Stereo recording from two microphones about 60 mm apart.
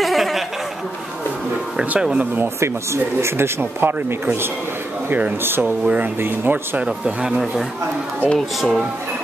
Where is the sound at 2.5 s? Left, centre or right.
Right.